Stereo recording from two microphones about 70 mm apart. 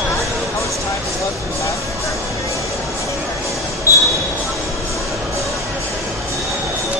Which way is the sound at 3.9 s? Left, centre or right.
Left.